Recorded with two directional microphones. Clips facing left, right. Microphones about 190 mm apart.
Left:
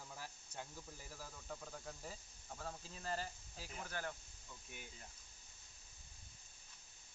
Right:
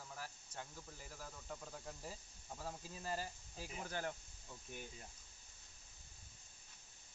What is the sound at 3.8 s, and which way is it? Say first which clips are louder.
Speech: right 2 dB; 25° right (ahead or behind).